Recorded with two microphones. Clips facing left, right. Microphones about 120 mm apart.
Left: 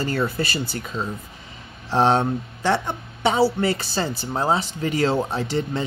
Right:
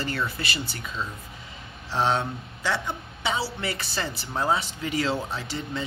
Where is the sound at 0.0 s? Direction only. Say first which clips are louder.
Left 6 dB; 45° left (ahead or behind).